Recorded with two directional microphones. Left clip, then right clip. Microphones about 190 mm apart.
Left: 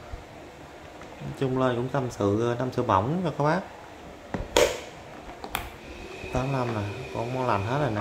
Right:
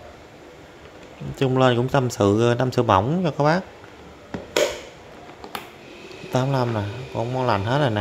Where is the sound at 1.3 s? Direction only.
45° right (ahead or behind).